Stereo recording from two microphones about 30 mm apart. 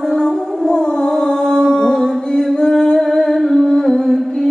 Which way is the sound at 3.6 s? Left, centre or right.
Centre.